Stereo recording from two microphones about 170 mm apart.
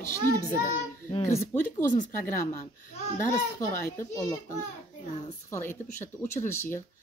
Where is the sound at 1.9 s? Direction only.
50° left (ahead or behind).